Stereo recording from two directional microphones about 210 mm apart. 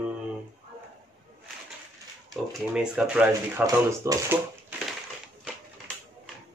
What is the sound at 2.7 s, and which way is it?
Speech, 5° right (ahead or behind).